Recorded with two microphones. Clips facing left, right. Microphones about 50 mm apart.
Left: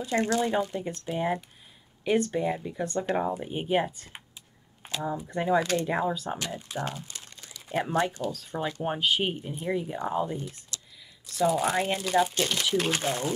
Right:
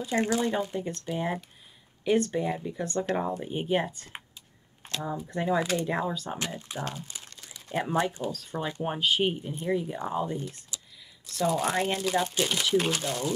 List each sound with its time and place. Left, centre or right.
0.2 s speech: centre
0.7 s speech: centre
5.6 s speech: centre
5.9 s speech: centre
12.9 s speech: left